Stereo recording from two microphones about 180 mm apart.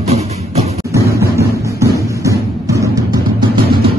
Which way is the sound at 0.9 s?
15° right (ahead or behind).